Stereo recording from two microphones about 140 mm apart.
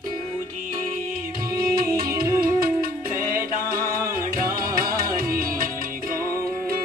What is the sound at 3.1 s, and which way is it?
Music, 85° right.